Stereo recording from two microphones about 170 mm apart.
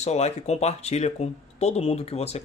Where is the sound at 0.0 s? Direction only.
40° left (ahead or behind).